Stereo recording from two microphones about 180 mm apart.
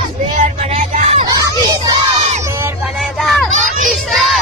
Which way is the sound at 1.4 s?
20° right (ahead or behind).